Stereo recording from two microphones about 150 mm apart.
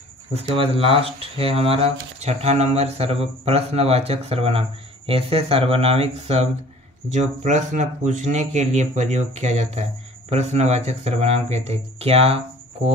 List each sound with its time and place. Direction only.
0.3 s speech: 40° right (ahead or behind)
7.1 s speech: 50° right (ahead or behind)